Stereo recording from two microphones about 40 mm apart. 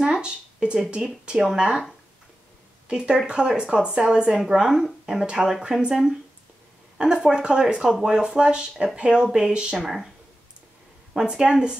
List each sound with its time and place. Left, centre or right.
0.1 s a woman's voice: right
2.9 s a woman's voice: right
7.0 s speech: right
9.8 s speech: centre
11.1 s speech: centre